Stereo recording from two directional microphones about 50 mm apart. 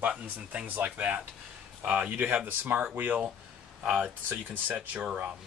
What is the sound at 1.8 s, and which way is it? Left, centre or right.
Speech, centre.